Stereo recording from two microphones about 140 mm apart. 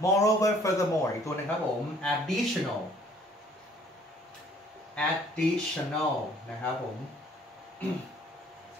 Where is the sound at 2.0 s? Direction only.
Centre (ahead or behind).